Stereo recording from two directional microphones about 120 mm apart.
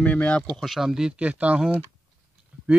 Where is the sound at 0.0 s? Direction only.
10° left (ahead or behind).